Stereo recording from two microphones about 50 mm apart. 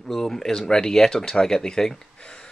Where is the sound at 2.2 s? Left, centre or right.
Centre.